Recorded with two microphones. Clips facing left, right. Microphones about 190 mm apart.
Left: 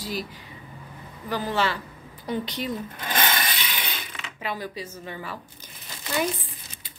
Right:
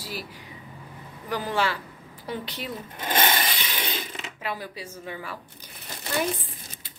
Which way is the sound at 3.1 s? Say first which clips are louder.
Right 2 dB; 25° right (ahead or behind).